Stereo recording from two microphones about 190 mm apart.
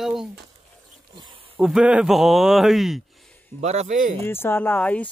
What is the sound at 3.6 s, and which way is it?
Speech, 35° right (ahead or behind).